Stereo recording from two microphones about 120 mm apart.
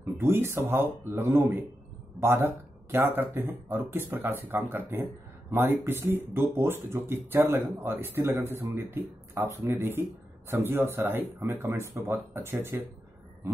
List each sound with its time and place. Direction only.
0.2 s speech: 20° right (ahead or behind)